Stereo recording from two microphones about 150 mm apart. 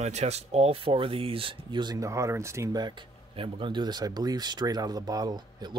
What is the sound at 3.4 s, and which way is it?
Speech, 35° right (ahead or behind).